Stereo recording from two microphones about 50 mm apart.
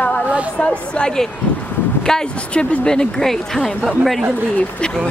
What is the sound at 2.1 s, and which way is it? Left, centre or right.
Speech, centre.